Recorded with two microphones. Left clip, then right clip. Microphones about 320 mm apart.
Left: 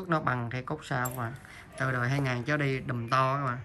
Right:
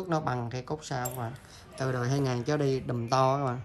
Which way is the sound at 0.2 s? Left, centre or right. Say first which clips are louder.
Left 2 dB; centre.